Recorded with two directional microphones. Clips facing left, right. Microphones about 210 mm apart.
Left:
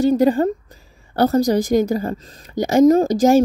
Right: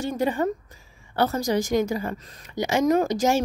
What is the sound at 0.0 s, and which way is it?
A woman's voice, 35° left (ahead or behind).